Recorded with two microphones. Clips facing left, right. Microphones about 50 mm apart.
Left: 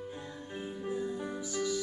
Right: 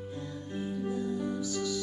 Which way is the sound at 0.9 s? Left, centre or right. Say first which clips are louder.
Right 1 dB; left.